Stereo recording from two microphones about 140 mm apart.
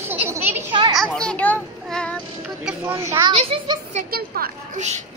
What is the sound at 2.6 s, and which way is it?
Speech, 5° right (ahead or behind).